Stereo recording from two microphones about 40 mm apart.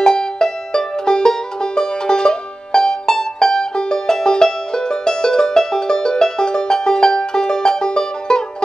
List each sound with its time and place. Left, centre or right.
0.0 s music: centre